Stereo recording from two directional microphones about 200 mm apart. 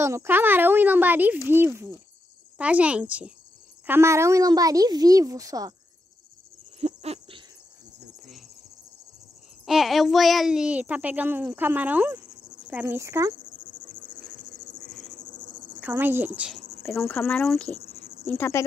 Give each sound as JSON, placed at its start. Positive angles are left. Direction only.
{"t": 0.0, "sound": "a child's voice", "side_deg": -15}
{"t": 6.8, "sound": "a sound", "side_deg": -30}
{"t": 9.7, "sound": "a child's voice", "side_deg": 0}
{"t": 15.3, "sound": "insect", "side_deg": 20}
{"t": 15.8, "sound": "speech", "side_deg": -10}
{"t": 16.8, "sound": "speech", "side_deg": 15}
{"t": 17.4, "sound": "speech", "side_deg": 0}
{"t": 18.2, "sound": "speech", "side_deg": 10}